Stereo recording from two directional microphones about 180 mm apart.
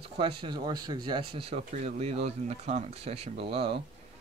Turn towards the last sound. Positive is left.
turn(degrees=-30)  # may be behind; listen again after turning